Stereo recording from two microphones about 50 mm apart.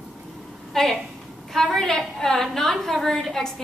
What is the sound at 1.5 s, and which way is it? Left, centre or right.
A woman's voice, centre.